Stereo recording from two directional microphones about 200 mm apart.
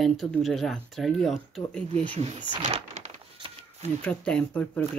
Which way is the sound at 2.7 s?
30° right (ahead or behind).